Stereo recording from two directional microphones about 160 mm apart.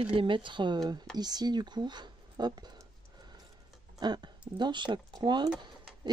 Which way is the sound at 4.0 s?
25° right (ahead or behind).